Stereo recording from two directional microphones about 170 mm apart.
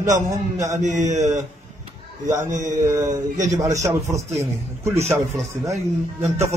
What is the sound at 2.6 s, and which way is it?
A man's voice, 20° right (ahead or behind).